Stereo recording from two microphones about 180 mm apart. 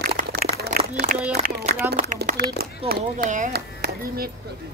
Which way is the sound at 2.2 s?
65° right (ahead or behind).